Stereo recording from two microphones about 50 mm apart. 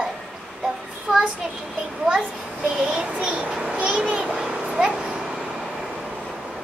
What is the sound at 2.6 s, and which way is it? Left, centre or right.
Child singing, centre.